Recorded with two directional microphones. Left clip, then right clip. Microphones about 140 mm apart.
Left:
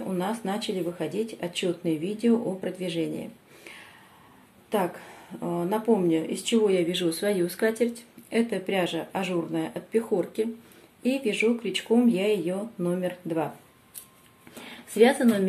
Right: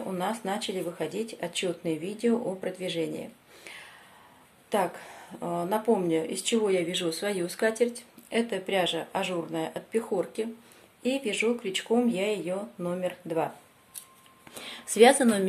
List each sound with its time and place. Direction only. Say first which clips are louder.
0.0 s speech: left 1 dB; 25° right (ahead or behind)
14.6 s speech: right 1 dB; 70° right (ahead or behind)